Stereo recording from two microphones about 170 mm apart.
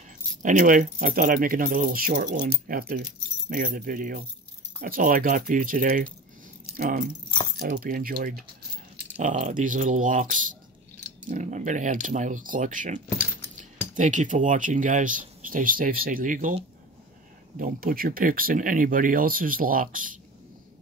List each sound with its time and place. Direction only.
0.4 s speech: 50° right (ahead or behind)
9.2 s speech: 45° right (ahead or behind)
17.6 s speech: 55° right (ahead or behind)